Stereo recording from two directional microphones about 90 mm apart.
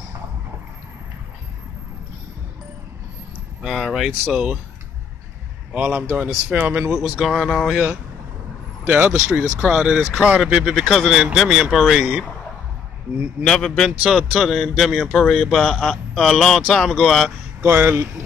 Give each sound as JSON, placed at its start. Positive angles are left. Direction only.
{"t": 3.6, "sound": "a man's voice", "side_deg": 0}
{"t": 5.7, "sound": "speech", "side_deg": -10}
{"t": 7.2, "sound": "a man's voice", "side_deg": 5}
{"t": 7.7, "sound": "a man's voice", "side_deg": -15}
{"t": 13.4, "sound": "a man's voice", "side_deg": 10}
{"t": 17.6, "sound": "speech", "side_deg": -25}